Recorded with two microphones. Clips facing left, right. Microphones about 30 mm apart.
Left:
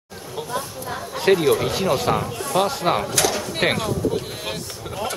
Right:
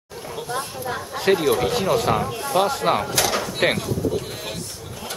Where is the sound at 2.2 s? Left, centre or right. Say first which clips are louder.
Right 1 dB; centre.